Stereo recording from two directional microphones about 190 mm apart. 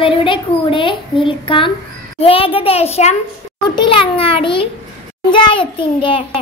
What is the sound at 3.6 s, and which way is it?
Child singing, 25° left (ahead or behind).